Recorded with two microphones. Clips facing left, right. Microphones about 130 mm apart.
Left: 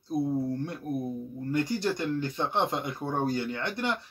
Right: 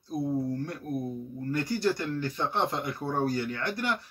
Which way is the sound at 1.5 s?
20° left (ahead or behind).